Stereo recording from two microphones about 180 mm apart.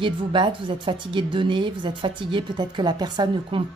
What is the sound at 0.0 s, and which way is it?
Speech, 25° right (ahead or behind).